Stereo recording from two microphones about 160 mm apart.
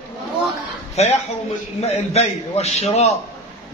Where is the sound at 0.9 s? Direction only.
40° left (ahead or behind).